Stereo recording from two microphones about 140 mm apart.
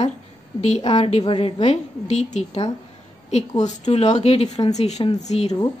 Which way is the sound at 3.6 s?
50° left (ahead or behind).